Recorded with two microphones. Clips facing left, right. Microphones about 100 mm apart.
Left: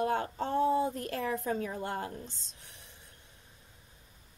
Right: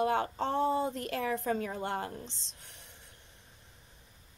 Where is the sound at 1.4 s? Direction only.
60° right (ahead or behind).